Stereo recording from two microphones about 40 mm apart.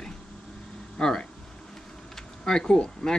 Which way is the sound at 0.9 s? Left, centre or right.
Centre.